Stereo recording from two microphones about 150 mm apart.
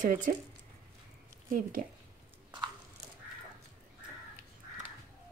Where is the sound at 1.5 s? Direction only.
65° right (ahead or behind).